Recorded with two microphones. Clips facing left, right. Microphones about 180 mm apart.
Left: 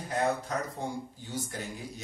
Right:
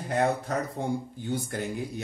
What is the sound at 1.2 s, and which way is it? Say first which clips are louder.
Speech: right 7 dB; 60° right (ahead or behind).